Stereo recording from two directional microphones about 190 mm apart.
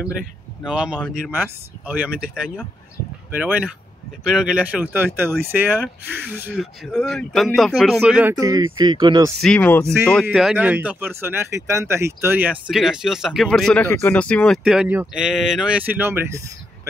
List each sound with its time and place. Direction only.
0.7 s speech: 5° right (ahead or behind)
8.4 s speech: 20° right (ahead or behind)
9.4 s speech: 5° left (ahead or behind)
10.2 s speech: 5° right (ahead or behind)